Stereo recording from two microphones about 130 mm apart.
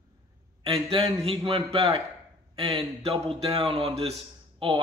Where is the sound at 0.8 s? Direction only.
45° right (ahead or behind).